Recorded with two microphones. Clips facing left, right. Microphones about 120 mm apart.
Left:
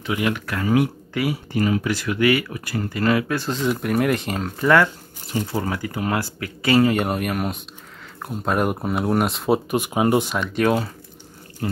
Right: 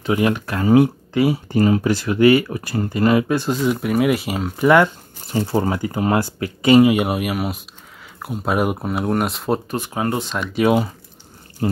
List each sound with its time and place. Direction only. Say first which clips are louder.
0.0 s speech: right 5 dB; 30° right (ahead or behind); by 3.6 s 15° right (ahead or behind)
3.6 s speech: right 1 dB; centre (ahead or behind)
5.4 s speech: right 6 dB; 30° right (ahead or behind); by 9.6 s centre (ahead or behind)
9.7 s speech: left 3 dB; 15° left (ahead or behind)
10.4 s speech: right 3 dB; 10° right (ahead or behind)
11.6 s water tap: right 5 dB; 25° right (ahead or behind)